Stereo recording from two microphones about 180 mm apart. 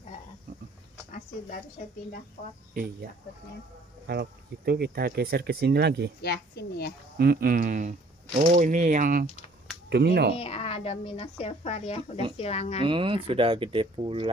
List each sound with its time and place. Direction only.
2.4 s speech: 40° left (ahead or behind)
2.7 s speech: 55° right (ahead or behind)
4.1 s speech: 60° right (ahead or behind)
6.2 s speech: 65° left (ahead or behind)
7.2 s speech: 55° right (ahead or behind)
9.8 s speech: 65° right (ahead or behind)
10.3 s speech: 30° left (ahead or behind)
12.8 s speech: 30° right (ahead or behind)